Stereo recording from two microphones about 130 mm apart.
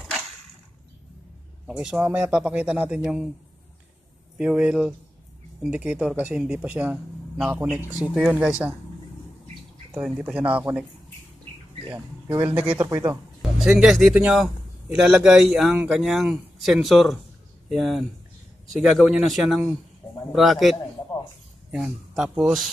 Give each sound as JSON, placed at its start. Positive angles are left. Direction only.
{"t": 1.7, "sound": "speech", "side_deg": -5}
{"t": 4.4, "sound": "speech", "side_deg": -10}
{"t": 9.9, "sound": "speech", "side_deg": -5}
{"t": 11.8, "sound": "speech", "side_deg": -40}
{"t": 12.5, "sound": "speech", "side_deg": -10}
{"t": 12.8, "sound": "speech", "side_deg": -25}
{"t": 13.4, "sound": "a man's voice", "side_deg": -5}
{"t": 22.1, "sound": "a man's voice", "side_deg": -5}